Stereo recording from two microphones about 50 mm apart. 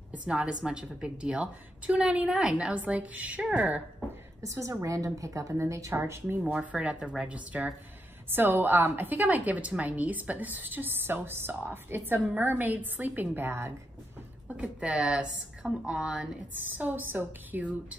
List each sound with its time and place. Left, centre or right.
0.3 s a woman's voice: centre
2.7 s a woman's voice: right
4.4 s speech: right
6.5 s a woman's voice: right
8.3 s a woman's voice: right
14.5 s a woman's voice: right
16.5 s a woman's voice: right